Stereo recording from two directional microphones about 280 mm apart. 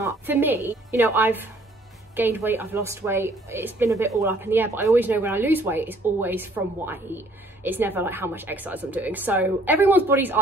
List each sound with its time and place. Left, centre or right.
0.0 s speech: centre